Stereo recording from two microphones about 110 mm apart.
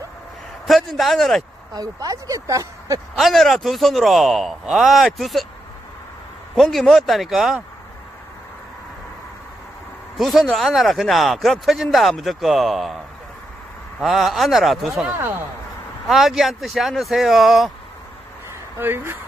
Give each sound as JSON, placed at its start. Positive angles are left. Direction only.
{"t": 0.7, "sound": "a man's voice", "side_deg": 0}
{"t": 1.7, "sound": "speech", "side_deg": -35}
{"t": 3.2, "sound": "speech", "side_deg": 0}
{"t": 6.5, "sound": "speech", "side_deg": 0}
{"t": 10.1, "sound": "speech", "side_deg": 0}
{"t": 18.8, "sound": "speech", "side_deg": -20}